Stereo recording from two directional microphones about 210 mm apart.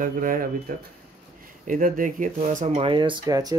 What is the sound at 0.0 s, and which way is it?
Speech, 40° right (ahead or behind).